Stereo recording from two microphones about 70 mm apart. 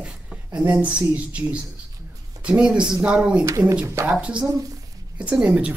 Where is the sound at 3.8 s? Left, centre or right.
Right.